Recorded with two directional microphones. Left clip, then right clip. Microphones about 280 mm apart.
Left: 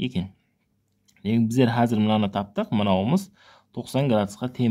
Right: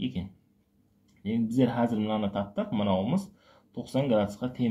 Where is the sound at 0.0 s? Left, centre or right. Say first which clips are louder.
Left 5 dB; left.